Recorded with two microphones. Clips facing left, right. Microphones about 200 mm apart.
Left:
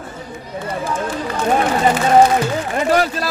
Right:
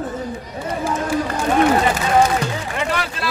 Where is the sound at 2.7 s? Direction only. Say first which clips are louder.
Left 7 dB; 40° left (ahead or behind).